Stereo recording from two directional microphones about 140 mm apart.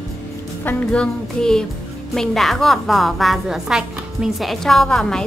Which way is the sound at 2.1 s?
Centre (ahead or behind).